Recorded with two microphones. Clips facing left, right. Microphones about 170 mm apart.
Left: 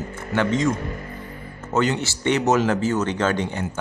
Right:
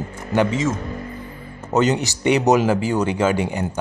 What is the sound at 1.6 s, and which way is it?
Speech, 15° right (ahead or behind).